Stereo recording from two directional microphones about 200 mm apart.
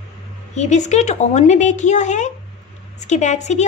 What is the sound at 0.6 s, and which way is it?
Speech, 35° left (ahead or behind).